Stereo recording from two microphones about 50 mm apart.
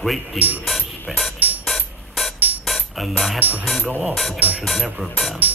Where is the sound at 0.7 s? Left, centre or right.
Centre.